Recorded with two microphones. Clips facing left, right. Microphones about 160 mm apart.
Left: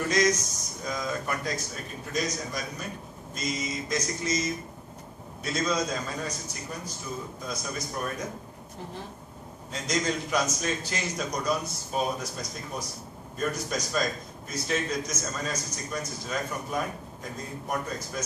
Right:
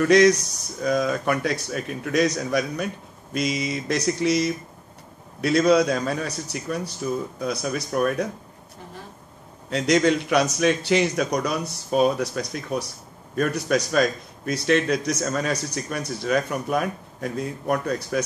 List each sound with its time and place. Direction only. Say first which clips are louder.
0.1 s a man's voice: right 10 dB; 70° right (ahead or behind)
9.7 s a man's voice: right 10 dB; 70° right (ahead or behind)